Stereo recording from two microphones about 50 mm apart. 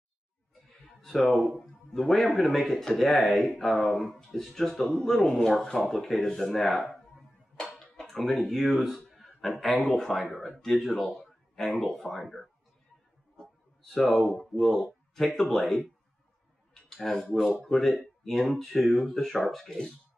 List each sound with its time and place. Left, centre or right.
0.7 s music: centre
1.6 s speech: centre
6.9 s a sound: centre
8.1 s a man's voice: centre
13.9 s speech: centre
16.9 s speech: centre